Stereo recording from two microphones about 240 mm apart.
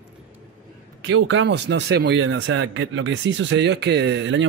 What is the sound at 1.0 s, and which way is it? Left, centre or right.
Speech, right.